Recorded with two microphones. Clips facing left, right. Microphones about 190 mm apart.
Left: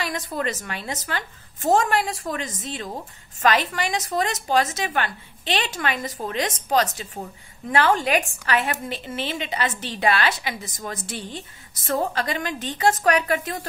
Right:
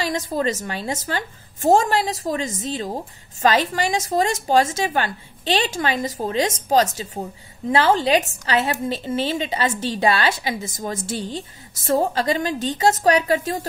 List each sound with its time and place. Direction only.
0.0 s a woman's voice: 30° right (ahead or behind)
2.5 s a woman's voice: 45° right (ahead or behind)
2.8 s a woman's voice: 30° right (ahead or behind)